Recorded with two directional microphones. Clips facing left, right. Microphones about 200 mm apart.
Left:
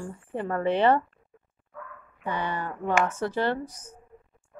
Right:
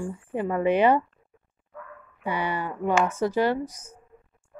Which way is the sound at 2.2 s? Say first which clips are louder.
Right 2 dB; 10° right (ahead or behind).